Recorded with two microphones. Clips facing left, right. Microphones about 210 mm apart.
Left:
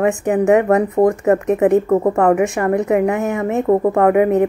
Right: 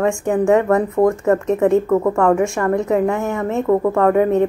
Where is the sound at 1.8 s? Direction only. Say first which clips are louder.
Left 1 dB; 35° left (ahead or behind).